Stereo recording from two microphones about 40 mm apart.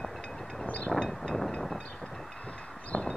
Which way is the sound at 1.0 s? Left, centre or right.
Centre.